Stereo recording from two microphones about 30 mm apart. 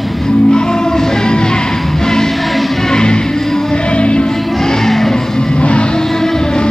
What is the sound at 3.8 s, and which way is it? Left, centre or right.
Music, left.